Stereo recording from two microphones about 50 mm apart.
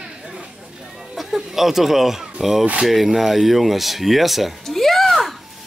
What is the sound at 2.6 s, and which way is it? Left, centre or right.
Speech, centre.